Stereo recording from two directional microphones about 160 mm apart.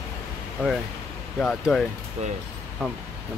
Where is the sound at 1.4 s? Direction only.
Centre (ahead or behind).